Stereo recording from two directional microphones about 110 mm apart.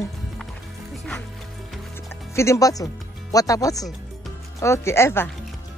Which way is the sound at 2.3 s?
25° left (ahead or behind).